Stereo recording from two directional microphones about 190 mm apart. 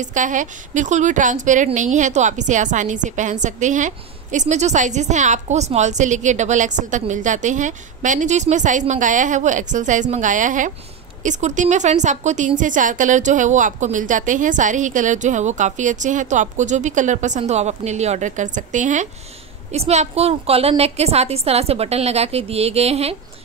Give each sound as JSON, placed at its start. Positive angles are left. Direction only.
{"t": 0.0, "sound": "a woman's voice", "side_deg": -40}